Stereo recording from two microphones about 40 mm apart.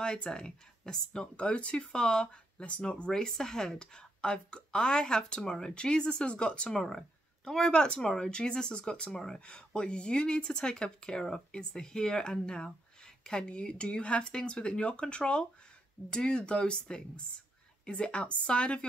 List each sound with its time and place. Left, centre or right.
0.0 s speech: left
1.2 s speech: left
3.1 s speech: centre
6.7 s speech: centre
9.8 s speech: left